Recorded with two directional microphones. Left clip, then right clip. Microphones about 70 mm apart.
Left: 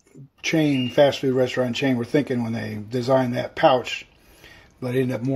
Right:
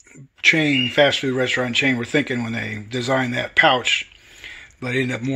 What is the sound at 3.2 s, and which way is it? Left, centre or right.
Speech, left.